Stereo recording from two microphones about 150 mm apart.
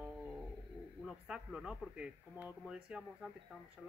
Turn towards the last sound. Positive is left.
turn(degrees=-5)  # may be behind; listen again after turning